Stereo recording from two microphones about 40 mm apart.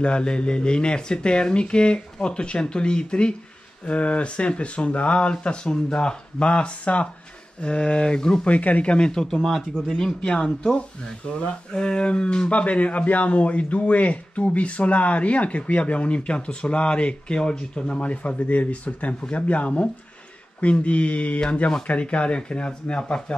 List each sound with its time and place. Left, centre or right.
0.0 s speech: left
8.5 s speech: left
8.9 s speech: left
9.2 s speech: centre